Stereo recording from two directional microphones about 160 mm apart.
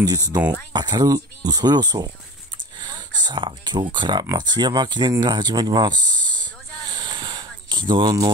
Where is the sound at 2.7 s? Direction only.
30° right (ahead or behind).